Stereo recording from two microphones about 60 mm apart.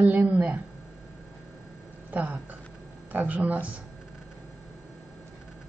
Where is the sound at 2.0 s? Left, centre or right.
Right.